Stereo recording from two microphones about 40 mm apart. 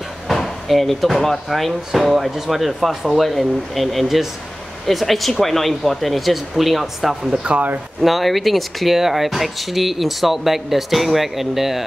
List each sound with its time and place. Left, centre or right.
0.3 s speech: centre
7.5 s speech: right
8.0 s speech: centre